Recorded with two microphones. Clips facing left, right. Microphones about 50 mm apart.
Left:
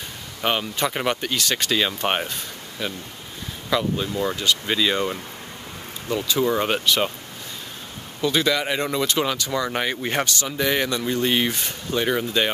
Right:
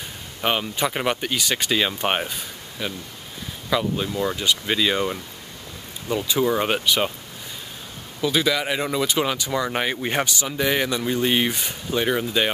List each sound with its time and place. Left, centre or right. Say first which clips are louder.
0.4 s speech: even; centre
6.1 s speech: even; centre
6.4 s speech: even; centre
8.2 s speech: even; centre